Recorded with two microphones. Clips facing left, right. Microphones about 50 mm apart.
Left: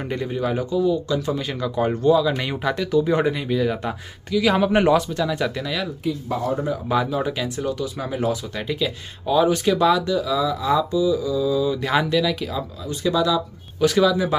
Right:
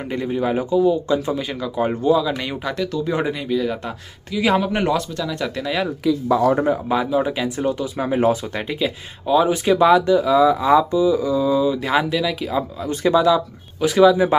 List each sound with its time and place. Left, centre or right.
0.1 s speech: centre
0.4 s speech: centre
1.3 s speech: centre
4.3 s speech: centre
4.6 s speech: centre
6.9 s speech: centre; by 8.6 s right
8.6 s speech: centre
9.7 s speech: right
11.8 s speech: centre
12.8 s speech: right
13.1 s speech: right
13.7 s speech: centre